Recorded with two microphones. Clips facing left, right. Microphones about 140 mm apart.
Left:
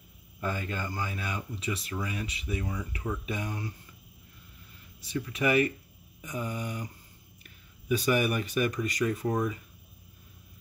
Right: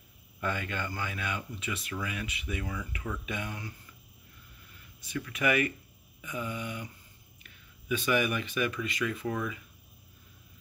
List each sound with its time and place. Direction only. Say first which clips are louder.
0.4 s speech: even; 35° left (ahead or behind)
5.0 s speech: left 2 dB; 30° left (ahead or behind)
7.9 s speech: left 2 dB; 40° left (ahead or behind)